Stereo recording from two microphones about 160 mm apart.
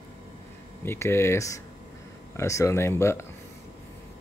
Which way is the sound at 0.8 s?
15° left (ahead or behind).